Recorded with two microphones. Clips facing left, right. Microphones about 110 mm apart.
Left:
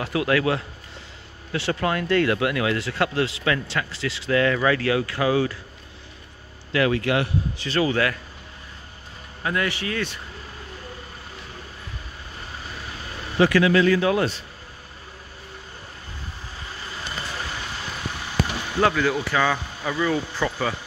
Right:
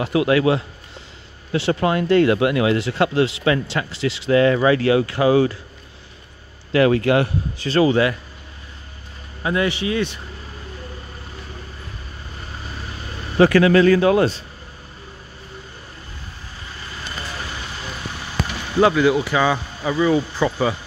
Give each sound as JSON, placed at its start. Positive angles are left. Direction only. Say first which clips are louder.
{"t": 0.0, "sound": "speech", "louder": "right 5 dB", "side_deg": -20}
{"t": 6.7, "sound": "speech", "louder": "right 6 dB", "side_deg": -35}
{"t": 7.9, "sound": "speech", "louder": "right 5 dB", "side_deg": -20}
{"t": 9.4, "sound": "speech", "louder": "right 5 dB", "side_deg": -20}
{"t": 13.4, "sound": "speech", "louder": "right 5 dB", "side_deg": -45}
{"t": 18.8, "sound": "speech", "louder": "right 6 dB", "side_deg": -15}